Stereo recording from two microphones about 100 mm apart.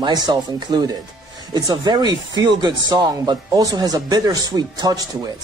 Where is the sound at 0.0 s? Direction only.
45° right (ahead or behind).